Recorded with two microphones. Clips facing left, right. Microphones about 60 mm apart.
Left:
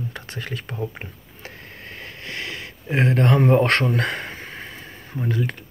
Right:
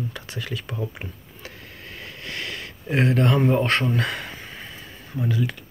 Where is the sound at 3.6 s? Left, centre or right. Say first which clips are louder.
Left 3 dB; left.